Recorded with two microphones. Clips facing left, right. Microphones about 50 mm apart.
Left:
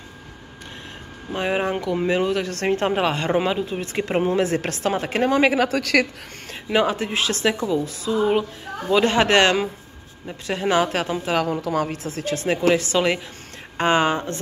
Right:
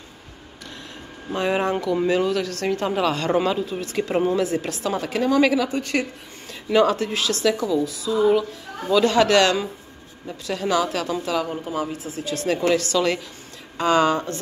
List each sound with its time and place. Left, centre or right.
1.3 s a woman's voice: centre
2.6 s speech: left
4.5 s a woman's voice: left
4.9 s speech: left
5.7 s a woman's voice: left
6.7 s speech: left
11.4 s speech: left
12.4 s a woman's voice: left
13.7 s speech: left